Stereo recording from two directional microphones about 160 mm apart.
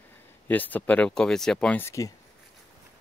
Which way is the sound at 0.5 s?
10° left (ahead or behind).